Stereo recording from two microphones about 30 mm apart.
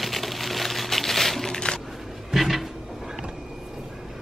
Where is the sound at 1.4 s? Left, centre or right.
Left.